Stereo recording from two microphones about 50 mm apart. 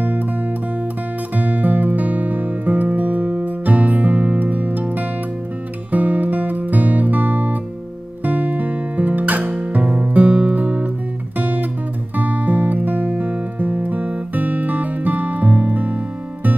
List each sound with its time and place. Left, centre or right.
1.3 s music: right